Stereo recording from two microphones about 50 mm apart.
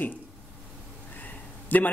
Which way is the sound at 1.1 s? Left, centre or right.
Left.